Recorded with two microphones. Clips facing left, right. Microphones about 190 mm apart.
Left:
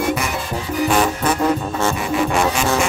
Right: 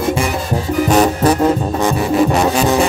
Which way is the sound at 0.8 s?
40° right (ahead or behind).